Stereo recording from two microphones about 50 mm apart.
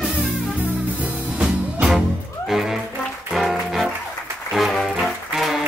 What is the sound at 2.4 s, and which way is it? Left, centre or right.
Music, centre.